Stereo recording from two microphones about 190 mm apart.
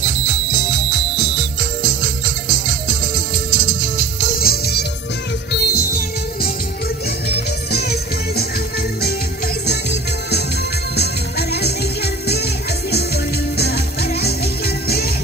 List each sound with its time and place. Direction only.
1.9 s music: 40° left (ahead or behind); by 8.5 s 55° left (ahead or behind)
9.7 s music: 60° left (ahead or behind)